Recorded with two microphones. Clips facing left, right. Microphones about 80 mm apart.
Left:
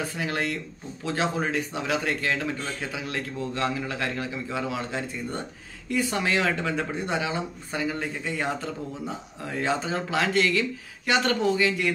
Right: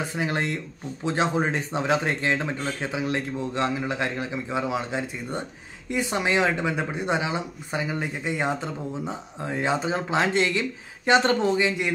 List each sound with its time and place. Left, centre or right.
0.0 s speech: right